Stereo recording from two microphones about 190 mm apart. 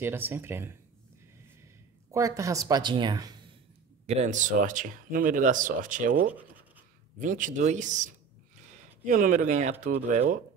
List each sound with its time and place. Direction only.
0.0 s speech: 10° right (ahead or behind)
2.0 s a woman's voice: 15° right (ahead or behind)
4.0 s speech: 35° right (ahead or behind)
7.2 s speech: 45° right (ahead or behind)